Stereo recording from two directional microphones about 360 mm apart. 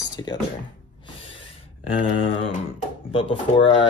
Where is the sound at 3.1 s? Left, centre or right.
Centre.